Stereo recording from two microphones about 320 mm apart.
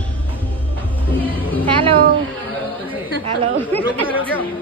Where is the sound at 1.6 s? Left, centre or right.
Centre.